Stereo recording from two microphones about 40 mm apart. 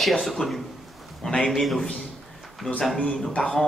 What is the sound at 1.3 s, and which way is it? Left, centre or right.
Speech, centre.